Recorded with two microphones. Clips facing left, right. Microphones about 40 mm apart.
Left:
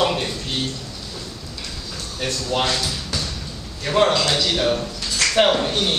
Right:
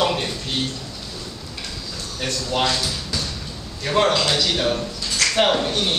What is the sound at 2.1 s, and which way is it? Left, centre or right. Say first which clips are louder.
Speech: left 1 dB; centre.